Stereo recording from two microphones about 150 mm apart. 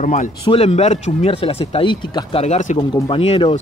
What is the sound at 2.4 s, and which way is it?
Speech, 55° left (ahead or behind).